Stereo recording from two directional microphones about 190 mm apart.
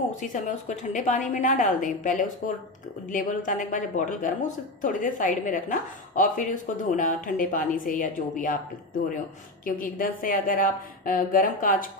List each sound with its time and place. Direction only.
0.1 s a woman's voice: 40° left (ahead or behind)
9.7 s speech: 45° left (ahead or behind)